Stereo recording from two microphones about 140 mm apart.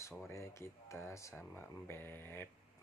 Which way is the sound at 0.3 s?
20° left (ahead or behind).